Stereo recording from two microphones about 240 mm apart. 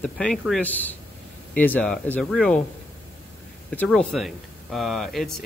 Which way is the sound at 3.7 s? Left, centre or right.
Centre.